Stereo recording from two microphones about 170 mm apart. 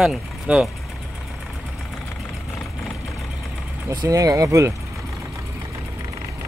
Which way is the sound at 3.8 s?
20° right (ahead or behind).